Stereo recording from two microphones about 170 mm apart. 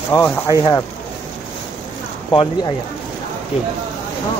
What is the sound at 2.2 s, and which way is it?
Speech, 25° left (ahead or behind).